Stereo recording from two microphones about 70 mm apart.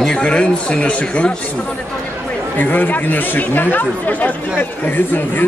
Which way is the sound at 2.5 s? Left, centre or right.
Left.